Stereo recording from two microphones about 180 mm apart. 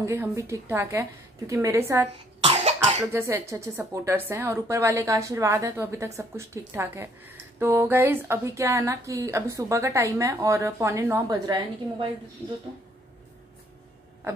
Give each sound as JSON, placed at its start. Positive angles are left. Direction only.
{"t": 0.0, "sound": "a woman's voice", "side_deg": -15}
{"t": 2.4, "sound": "cough", "side_deg": -35}
{"t": 3.1, "sound": "a woman's voice", "side_deg": -15}